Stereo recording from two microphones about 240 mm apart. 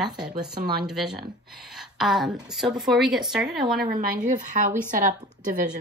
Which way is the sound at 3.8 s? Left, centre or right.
Right.